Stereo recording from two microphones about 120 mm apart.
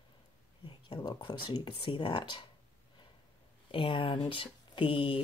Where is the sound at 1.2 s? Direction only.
40° left (ahead or behind).